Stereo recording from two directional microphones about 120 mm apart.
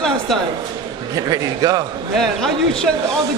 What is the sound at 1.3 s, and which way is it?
Speech, 30° right (ahead or behind).